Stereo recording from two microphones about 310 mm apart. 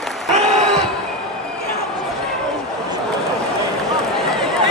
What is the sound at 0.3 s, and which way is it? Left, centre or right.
Crowd, right.